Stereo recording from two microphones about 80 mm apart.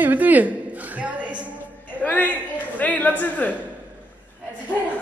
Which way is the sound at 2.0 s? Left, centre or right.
Left.